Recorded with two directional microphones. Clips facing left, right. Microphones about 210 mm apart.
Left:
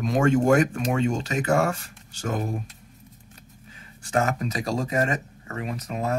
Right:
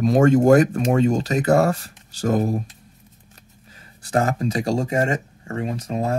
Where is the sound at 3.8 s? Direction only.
35° right (ahead or behind).